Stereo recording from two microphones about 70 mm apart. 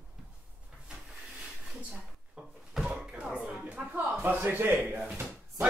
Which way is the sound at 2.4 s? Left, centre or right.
Centre.